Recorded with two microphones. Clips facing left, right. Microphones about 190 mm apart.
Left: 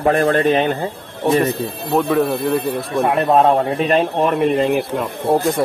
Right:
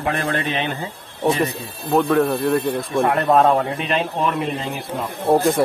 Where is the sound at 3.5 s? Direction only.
40° left (ahead or behind); by 4.9 s 65° left (ahead or behind).